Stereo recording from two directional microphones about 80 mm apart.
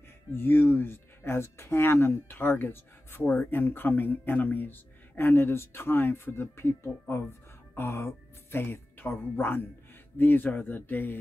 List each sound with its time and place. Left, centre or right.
0.3 s a woman's voice: left